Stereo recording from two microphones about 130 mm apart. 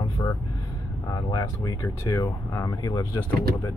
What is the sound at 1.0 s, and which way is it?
Speech, 25° left (ahead or behind).